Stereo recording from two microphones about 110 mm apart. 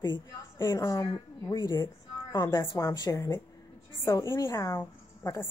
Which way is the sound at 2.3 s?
40° left (ahead or behind).